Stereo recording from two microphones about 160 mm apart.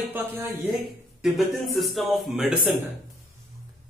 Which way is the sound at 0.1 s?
15° right (ahead or behind).